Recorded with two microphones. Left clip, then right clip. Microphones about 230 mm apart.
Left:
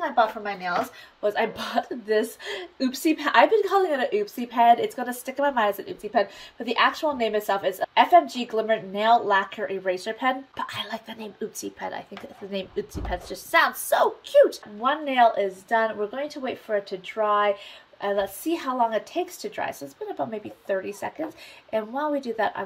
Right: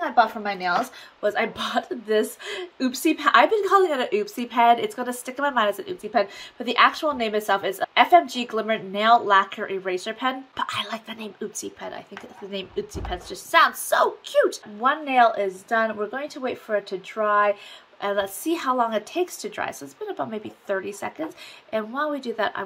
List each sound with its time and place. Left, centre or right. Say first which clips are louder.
1.2 s speech: right 1 dB; centre